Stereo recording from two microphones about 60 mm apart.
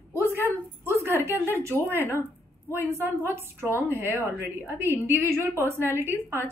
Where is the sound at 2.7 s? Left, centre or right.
Right.